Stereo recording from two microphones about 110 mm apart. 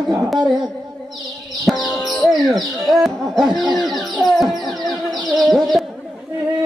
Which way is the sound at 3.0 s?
Centre (ahead or behind).